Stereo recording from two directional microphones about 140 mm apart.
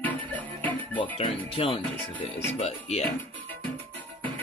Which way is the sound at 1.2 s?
40° left (ahead or behind).